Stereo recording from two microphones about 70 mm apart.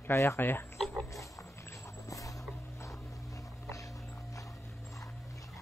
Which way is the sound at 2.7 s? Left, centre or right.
Left.